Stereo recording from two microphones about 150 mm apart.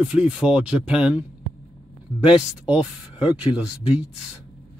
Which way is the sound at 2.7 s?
40° left (ahead or behind).